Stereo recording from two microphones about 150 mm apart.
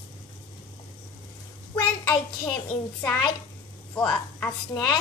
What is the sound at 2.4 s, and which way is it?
A woman's voice, 10° left (ahead or behind).